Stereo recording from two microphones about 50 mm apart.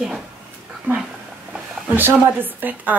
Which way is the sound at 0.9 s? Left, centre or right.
Right.